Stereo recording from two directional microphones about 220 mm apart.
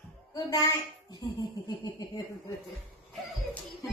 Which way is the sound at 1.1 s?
20° left (ahead or behind).